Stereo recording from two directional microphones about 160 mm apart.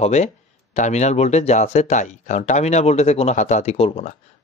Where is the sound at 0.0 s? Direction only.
45° left (ahead or behind).